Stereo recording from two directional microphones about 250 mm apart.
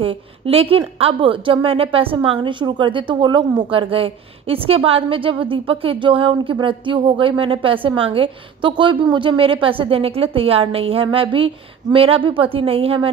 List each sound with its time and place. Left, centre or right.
0.0 s a woman's voice: right